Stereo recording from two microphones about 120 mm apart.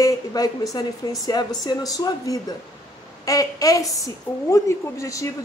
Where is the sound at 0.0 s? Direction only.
30° left (ahead or behind).